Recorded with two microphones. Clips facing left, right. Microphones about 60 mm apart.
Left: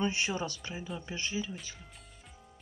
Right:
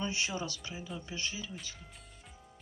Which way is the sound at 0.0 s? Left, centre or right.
Left.